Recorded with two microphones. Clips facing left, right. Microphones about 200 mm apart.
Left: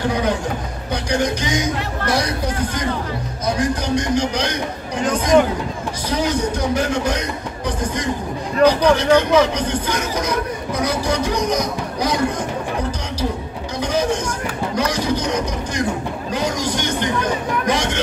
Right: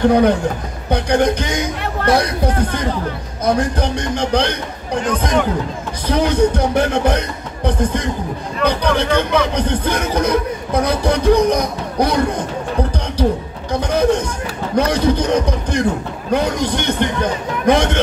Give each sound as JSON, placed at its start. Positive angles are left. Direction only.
{"t": 0.0, "sound": "speech", "side_deg": -60}
{"t": 6.0, "sound": "speech", "side_deg": -55}
{"t": 13.7, "sound": "music", "side_deg": -55}
{"t": 14.8, "sound": "speech", "side_deg": -55}